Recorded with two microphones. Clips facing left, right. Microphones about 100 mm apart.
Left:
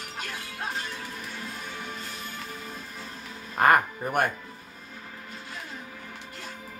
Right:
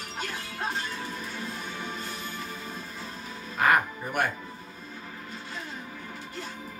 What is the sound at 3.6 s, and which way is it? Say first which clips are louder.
Music: left 3 dB; 45° left (ahead or behind).